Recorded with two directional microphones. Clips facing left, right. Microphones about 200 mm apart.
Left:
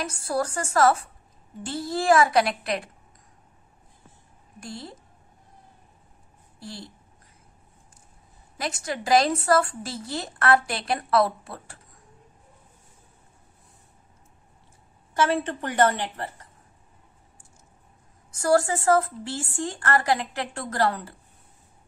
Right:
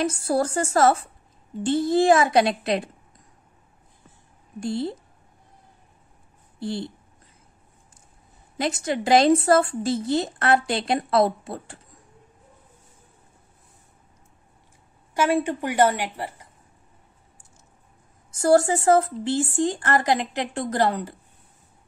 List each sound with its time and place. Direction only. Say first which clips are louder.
0.0 s a woman's voice: right 5 dB; 25° right (ahead or behind)
4.6 s a woman's voice: right 12 dB; 25° right (ahead or behind)
6.6 s a woman's voice: right 11 dB; 25° right (ahead or behind)
8.5 s a woman's voice: right 6 dB; 25° right (ahead or behind)
15.1 s a woman's voice: right 2 dB; 10° right (ahead or behind)
18.3 s a woman's voice: right 3 dB; 25° right (ahead or behind)